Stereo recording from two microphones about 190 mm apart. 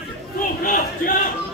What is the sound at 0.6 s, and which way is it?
Crowd, 50° left (ahead or behind).